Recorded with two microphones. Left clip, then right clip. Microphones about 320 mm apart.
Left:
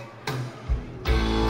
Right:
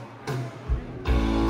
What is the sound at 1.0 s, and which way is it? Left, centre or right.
Music, left.